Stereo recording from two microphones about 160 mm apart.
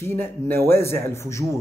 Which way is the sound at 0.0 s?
15° left (ahead or behind).